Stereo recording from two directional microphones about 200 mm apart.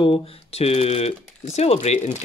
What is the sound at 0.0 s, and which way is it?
Speech, 30° left (ahead or behind).